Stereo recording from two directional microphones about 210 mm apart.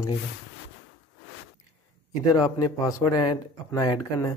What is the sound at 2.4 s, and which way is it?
Speech, 15° left (ahead or behind).